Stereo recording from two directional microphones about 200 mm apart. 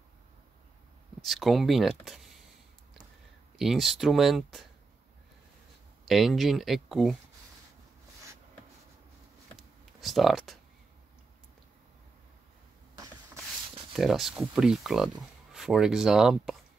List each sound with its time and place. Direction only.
1.2 s speech: centre (ahead or behind)
3.5 s speech: centre (ahead or behind)
6.0 s speech: centre (ahead or behind)
9.6 s a sound: centre (ahead or behind)
12.9 s a sound: 20° right (ahead or behind)
13.9 s speech: centre (ahead or behind)